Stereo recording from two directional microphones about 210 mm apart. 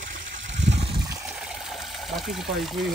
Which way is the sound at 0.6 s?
30° right (ahead or behind).